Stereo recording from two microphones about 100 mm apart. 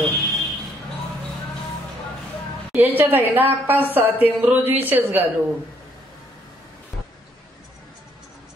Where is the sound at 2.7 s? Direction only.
20° right (ahead or behind).